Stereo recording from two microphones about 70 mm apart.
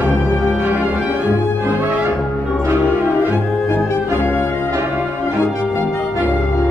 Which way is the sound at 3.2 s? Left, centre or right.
Right.